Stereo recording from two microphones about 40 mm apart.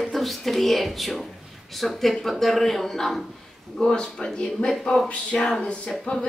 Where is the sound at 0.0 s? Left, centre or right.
Centre.